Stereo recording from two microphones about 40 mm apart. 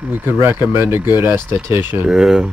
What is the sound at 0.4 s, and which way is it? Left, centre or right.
Speech, right.